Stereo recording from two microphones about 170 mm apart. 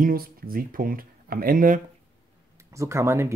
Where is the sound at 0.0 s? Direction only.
55° right (ahead or behind).